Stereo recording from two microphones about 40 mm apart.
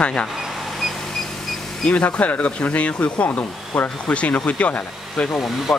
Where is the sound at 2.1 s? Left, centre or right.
Left.